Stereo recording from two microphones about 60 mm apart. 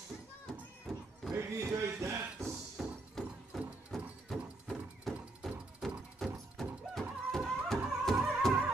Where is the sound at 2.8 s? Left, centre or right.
Centre.